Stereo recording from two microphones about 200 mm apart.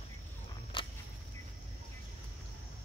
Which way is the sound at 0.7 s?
25° left (ahead or behind).